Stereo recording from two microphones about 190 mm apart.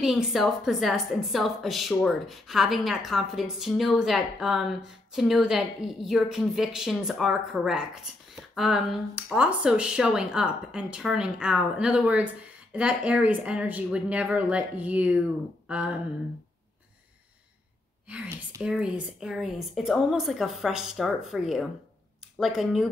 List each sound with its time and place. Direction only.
0.0 s a woman's voice: centre (ahead or behind)
18.0 s a woman's voice: 5° right (ahead or behind)